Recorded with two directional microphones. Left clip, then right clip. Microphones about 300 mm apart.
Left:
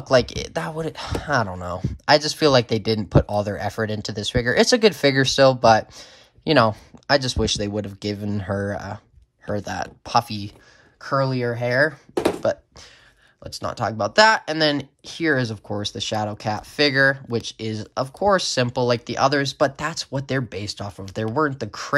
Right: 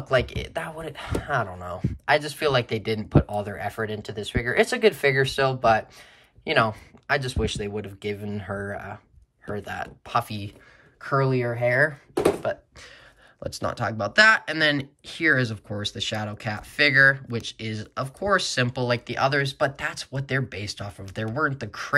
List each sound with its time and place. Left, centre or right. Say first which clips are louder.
0.0 s speech: left 5 dB; centre
9.7 s speech: left 2 dB; centre
11.8 s a sound: left 2 dB; centre
13.4 s speech: left 2 dB; centre